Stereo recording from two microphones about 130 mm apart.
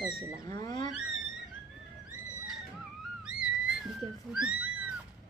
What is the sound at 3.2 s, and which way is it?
Cat, 5° right (ahead or behind).